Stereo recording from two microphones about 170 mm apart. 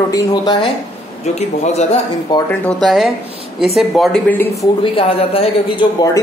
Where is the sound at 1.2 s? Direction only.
40° left (ahead or behind).